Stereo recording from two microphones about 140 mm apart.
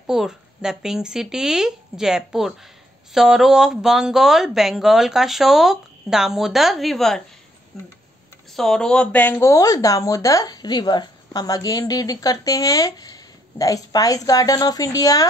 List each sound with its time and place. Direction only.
0.0 s speech: 5° right (ahead or behind); by 15.2 s 25° left (ahead or behind)